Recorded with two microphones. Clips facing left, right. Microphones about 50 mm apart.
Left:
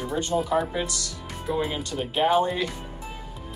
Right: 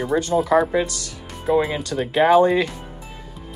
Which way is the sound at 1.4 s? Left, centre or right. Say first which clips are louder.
Right 8 dB; right.